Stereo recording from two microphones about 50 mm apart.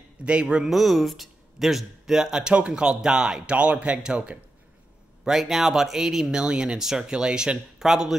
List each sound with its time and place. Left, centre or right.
0.2 s a man's voice: right
0.7 s speech: centre
3.5 s a man's voice: right
5.2 s speech: centre